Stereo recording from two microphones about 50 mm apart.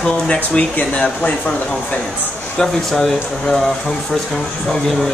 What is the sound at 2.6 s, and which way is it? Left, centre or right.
Speech, centre.